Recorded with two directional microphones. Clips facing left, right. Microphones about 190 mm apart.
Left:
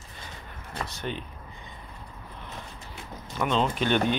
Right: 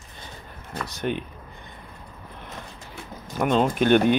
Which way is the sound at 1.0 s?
60° right (ahead or behind).